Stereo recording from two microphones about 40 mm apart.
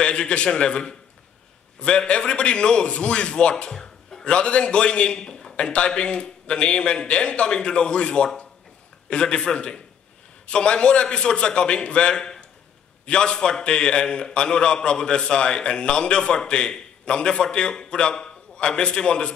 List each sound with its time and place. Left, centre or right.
0.0 s a man's voice: left
3.7 s a sound: centre
4.2 s a man's voice: left